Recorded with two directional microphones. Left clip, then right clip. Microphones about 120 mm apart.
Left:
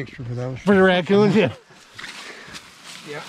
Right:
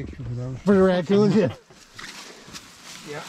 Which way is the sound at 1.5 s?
Centre (ahead or behind).